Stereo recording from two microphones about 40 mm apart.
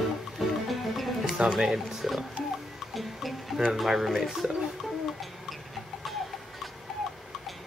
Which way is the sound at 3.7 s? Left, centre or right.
Centre.